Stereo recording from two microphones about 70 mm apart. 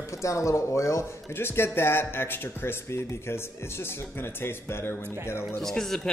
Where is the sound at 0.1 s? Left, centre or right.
Left.